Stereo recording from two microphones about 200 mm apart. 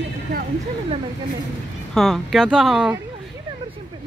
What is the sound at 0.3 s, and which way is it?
Speech, 55° right (ahead or behind).